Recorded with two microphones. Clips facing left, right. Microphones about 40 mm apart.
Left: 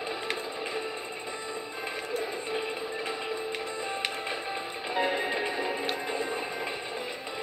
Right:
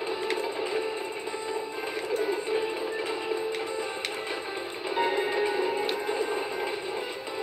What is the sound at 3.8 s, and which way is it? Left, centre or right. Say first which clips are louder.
Music: even; centre.